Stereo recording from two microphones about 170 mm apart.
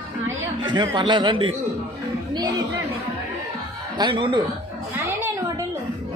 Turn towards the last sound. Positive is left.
turn(degrees=-30)  # may be behind; listen again after turning